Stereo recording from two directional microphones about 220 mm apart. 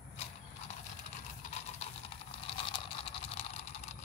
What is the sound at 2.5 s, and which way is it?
Vehicle, 25° left (ahead or behind).